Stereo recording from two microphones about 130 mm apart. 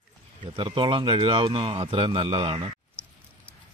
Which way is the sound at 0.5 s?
40° right (ahead or behind).